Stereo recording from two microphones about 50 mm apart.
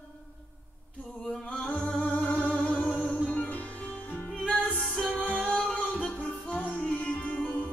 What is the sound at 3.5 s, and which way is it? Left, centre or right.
Music, left.